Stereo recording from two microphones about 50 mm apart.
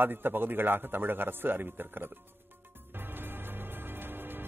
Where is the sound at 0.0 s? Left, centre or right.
Right.